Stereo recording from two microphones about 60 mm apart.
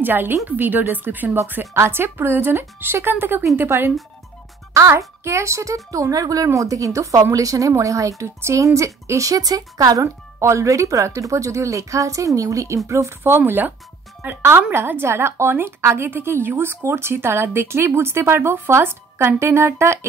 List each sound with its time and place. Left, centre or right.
0.0 s speech: right
3.7 s a woman's voice: right
5.9 s a woman's voice: right
9.3 s a woman's voice: right
10.4 s a woman's voice: right
13.5 s a woman's voice: right